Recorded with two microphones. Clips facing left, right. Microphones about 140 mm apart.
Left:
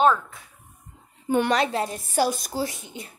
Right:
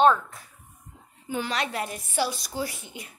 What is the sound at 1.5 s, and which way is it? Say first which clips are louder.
Speech: left 6 dB; 30° left (ahead or behind).